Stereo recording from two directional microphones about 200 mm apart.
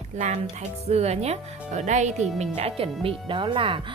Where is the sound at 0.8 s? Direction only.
30° right (ahead or behind).